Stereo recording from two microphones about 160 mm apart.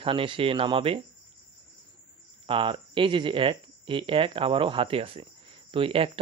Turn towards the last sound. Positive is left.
turn(degrees=-35)  # may be behind; listen again after turning